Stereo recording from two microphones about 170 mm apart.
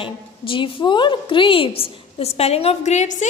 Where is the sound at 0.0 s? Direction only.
30° left (ahead or behind).